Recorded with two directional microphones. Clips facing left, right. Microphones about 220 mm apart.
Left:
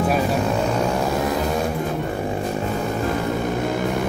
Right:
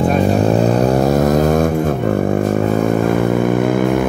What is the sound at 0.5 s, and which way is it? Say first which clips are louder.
Vehicle: right 8 dB; 35° right (ahead or behind).